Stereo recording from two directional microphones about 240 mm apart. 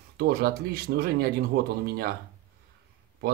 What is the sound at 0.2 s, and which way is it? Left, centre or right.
Speech, right.